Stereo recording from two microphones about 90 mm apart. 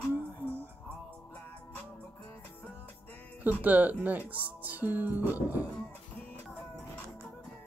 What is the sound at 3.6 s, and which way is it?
Speech, 15° right (ahead or behind).